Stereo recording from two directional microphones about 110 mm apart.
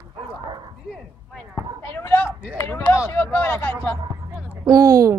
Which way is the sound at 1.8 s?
20° left (ahead or behind).